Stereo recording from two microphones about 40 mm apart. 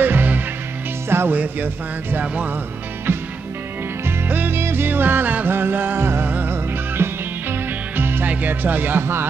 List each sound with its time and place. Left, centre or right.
0.0 s music: right
1.0 s music: right
1.3 s music: right
4.5 s music: right
5.5 s music: right
5.9 s music: right
6.2 s music: right
6.5 s music: right
8.3 s speech: right
9.0 s a man's voice: right